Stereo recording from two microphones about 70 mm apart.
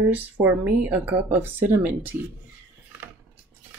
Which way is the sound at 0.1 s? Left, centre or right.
Right.